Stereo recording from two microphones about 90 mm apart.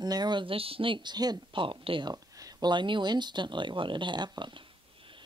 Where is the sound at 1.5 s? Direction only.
75° right (ahead or behind).